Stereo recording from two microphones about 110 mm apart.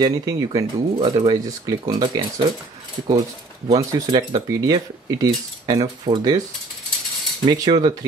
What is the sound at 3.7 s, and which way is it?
Speech, 35° right (ahead or behind).